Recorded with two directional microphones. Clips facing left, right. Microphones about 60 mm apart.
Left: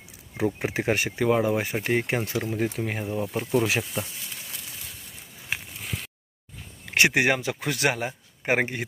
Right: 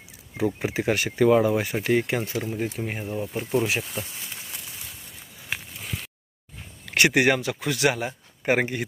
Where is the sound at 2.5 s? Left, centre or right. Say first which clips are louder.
Left 2 dB; left.